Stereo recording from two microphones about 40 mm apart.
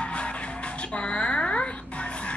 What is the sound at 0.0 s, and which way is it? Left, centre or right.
Music, left.